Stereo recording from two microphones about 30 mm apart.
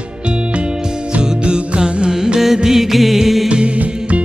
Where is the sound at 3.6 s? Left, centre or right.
Right.